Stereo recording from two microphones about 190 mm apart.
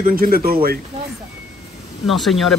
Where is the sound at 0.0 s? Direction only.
50° right (ahead or behind).